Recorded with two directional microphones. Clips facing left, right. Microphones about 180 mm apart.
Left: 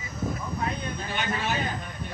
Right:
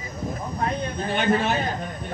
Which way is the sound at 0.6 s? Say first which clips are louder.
Right 8 dB; 50° right (ahead or behind).